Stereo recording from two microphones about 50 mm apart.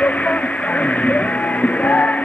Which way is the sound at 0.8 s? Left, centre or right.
Left.